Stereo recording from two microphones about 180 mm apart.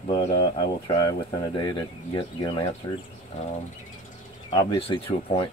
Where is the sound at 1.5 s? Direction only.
25° left (ahead or behind).